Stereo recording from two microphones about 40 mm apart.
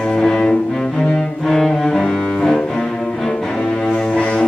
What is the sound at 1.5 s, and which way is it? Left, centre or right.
Cello, centre.